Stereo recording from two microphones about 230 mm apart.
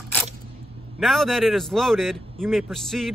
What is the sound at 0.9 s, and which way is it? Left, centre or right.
A man's voice, centre.